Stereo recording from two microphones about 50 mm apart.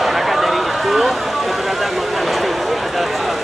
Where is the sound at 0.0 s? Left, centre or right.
Centre.